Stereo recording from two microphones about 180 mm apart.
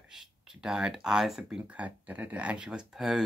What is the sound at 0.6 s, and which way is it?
Speech, 5° right (ahead or behind).